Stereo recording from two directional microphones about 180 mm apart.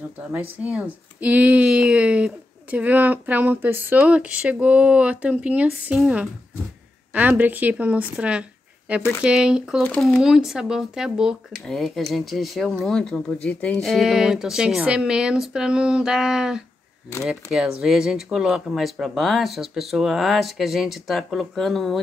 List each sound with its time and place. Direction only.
0.7 s speech: 10° right (ahead or behind)
8.2 s shuffling cards: 5° right (ahead or behind)
9.2 s speech: 5° right (ahead or behind)